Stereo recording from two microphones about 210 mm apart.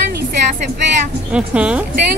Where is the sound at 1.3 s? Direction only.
5° right (ahead or behind).